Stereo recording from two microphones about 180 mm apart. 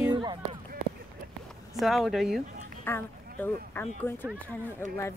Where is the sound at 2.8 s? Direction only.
10° left (ahead or behind).